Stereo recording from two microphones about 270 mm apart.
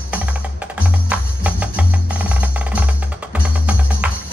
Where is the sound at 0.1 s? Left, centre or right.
Centre.